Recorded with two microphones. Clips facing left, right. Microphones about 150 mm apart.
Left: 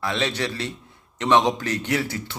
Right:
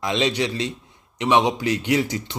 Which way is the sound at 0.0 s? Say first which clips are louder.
Right 3 dB; 15° right (ahead or behind).